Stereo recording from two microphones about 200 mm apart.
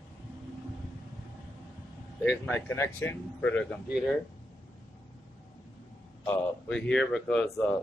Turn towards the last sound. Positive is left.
turn(degrees=5)  # may be behind; listen again after turning